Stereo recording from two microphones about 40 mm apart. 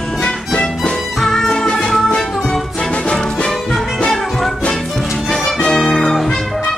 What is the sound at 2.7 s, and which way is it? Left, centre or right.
Music, left.